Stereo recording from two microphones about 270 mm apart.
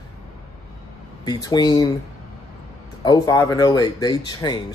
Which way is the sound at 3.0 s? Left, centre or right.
Centre.